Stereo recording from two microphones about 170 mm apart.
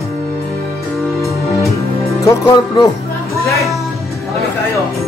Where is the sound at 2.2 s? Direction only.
20° left (ahead or behind).